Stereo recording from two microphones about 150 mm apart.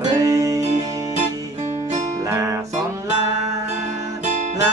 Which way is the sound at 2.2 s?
20° right (ahead or behind).